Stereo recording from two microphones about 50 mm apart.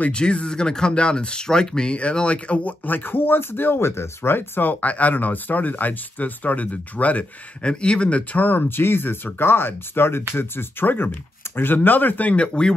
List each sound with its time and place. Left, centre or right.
0.1 s speech: left
2.8 s speech: left
4.7 s speech: left